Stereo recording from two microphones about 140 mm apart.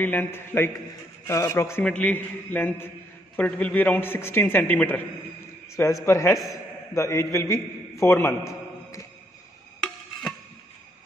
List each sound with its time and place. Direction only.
0.0 s a man's voice: 15° left (ahead or behind)
6.0 s a man's voice: 20° left (ahead or behind)